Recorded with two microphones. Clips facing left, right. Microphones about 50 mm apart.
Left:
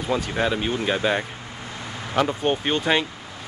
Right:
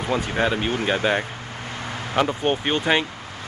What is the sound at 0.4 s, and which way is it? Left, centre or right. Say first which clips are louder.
Speech: right 3 dB; centre.